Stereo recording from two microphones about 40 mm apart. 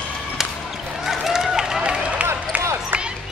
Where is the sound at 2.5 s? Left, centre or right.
Right.